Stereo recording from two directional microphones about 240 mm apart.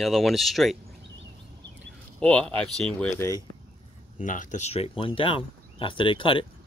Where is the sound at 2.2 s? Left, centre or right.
Centre.